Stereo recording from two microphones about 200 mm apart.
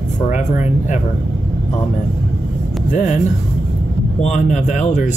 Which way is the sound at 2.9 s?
40° left (ahead or behind).